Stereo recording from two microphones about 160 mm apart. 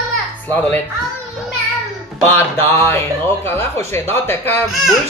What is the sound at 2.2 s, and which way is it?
Speech, 15° left (ahead or behind).